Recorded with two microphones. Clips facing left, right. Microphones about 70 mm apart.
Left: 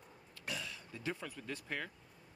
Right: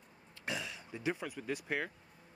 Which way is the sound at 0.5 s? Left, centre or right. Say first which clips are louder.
Right 4 dB; centre.